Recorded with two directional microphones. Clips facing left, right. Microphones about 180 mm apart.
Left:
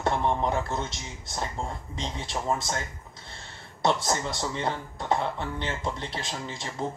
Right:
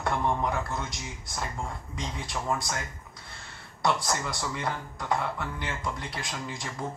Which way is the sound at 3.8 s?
25° left (ahead or behind).